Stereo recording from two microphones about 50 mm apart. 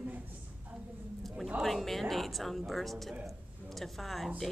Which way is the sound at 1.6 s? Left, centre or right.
Centre.